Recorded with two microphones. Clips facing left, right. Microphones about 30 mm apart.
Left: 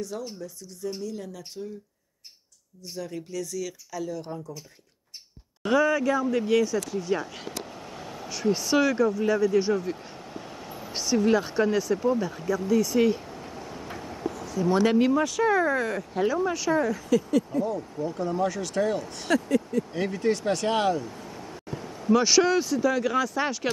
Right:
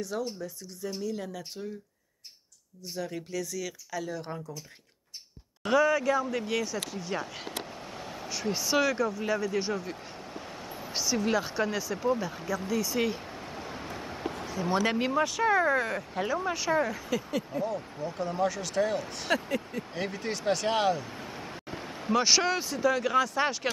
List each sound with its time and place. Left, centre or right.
0.1 s speech: right
1.0 s speech: centre
3.0 s speech: centre
5.6 s speech: centre
7.8 s vehicle: centre
11.2 s speech: centre
12.0 s speech: centre
13.3 s a sound: centre
14.5 s speech: centre
20.0 s speech: centre
21.0 s a sound: right
22.1 s speech: centre